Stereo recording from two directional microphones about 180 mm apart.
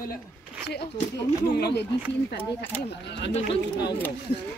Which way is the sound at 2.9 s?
70° left (ahead or behind).